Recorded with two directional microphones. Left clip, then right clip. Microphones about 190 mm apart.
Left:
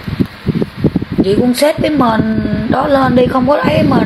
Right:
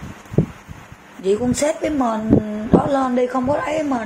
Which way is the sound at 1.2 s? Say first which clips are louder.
Left 7 dB; 10° left (ahead or behind).